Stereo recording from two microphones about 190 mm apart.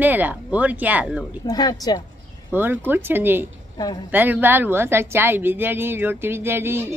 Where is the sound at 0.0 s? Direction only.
10° right (ahead or behind).